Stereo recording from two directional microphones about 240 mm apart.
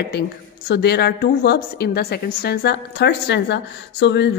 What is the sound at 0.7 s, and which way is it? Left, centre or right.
A woman's voice, left.